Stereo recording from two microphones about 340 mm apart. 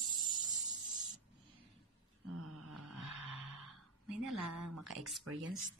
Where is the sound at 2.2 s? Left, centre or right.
Right.